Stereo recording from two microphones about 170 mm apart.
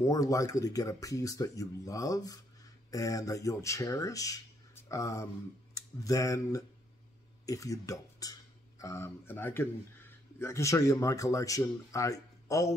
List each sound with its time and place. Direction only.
0.0 s speech: 20° left (ahead or behind)